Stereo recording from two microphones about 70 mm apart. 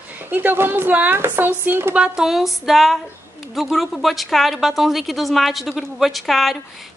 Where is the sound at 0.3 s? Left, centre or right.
Right.